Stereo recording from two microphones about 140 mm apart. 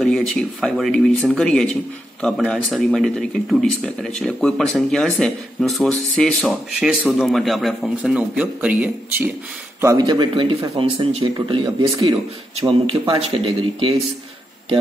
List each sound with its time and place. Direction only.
0.0 s a man's voice: 5° left (ahead or behind)
9.8 s a man's voice: 25° right (ahead or behind); by 13.9 s 45° right (ahead or behind)